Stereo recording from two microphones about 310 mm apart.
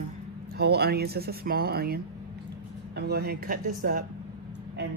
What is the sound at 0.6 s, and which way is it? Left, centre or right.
Speech, right.